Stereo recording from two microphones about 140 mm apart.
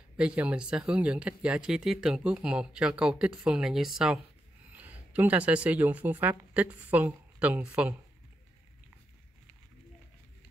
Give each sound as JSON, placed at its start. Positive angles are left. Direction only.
{"t": 0.2, "sound": "speech", "side_deg": -10}